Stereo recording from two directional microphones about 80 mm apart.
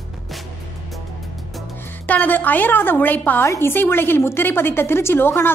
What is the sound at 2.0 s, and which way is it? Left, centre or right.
A woman's voice, left.